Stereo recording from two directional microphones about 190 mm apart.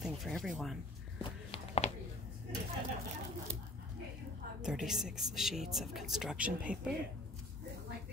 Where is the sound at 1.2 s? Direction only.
30° left (ahead or behind).